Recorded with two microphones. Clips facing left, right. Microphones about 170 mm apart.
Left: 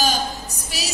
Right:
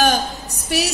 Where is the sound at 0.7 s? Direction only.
60° right (ahead or behind).